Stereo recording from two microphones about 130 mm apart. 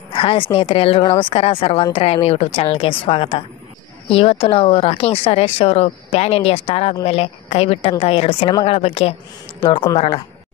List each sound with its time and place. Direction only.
0.1 s a woman's voice: 45° left (ahead or behind)